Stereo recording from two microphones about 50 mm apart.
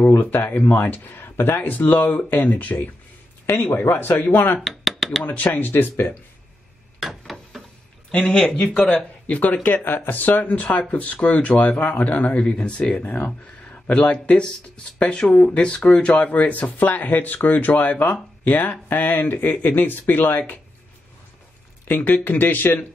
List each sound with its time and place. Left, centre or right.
0.2 s speech: left
3.7 s speech: left
4.0 s speech: left
4.6 s a sound: centre
5.2 s speech: left
5.7 s speech: left
7.0 s a sound: centre
8.1 s speech: left
9.3 s speech: left
9.8 s speech: left
13.9 s speech: centre
16.2 s speech: left
21.8 s speech: left